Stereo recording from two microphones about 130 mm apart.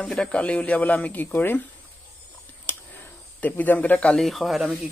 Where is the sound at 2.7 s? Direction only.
20° left (ahead or behind).